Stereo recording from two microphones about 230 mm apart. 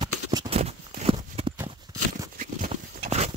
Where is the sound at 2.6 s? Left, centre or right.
Right.